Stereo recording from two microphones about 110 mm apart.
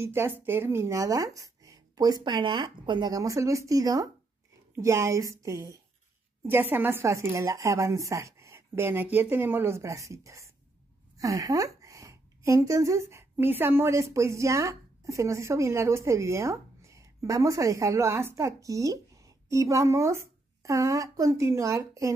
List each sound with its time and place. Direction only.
0.0 s a woman's voice: 25° right (ahead or behind)